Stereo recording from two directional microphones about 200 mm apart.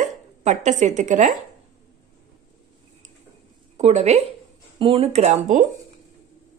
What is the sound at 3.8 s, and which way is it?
A woman's voice, 35° right (ahead or behind).